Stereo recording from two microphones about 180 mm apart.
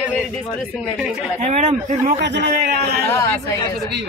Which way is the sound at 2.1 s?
75° right (ahead or behind).